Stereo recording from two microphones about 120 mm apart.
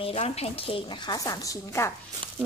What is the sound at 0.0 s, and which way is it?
A woman's voice, 55° left (ahead or behind).